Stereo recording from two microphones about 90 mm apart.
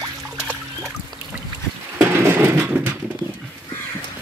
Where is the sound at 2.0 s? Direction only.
30° right (ahead or behind).